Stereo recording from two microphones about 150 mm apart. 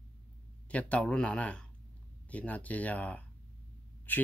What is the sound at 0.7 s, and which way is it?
Speech, 10° left (ahead or behind).